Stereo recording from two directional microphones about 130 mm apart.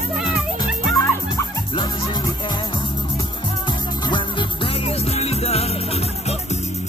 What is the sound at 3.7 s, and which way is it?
Music, 35° left (ahead or behind).